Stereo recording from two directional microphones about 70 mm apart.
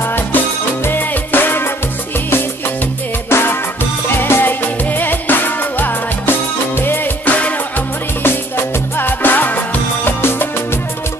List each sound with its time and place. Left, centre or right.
0.8 s music: left
3.3 s music: left
8.2 s music: left